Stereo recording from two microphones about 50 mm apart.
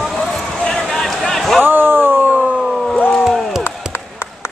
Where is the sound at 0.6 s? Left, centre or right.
Centre.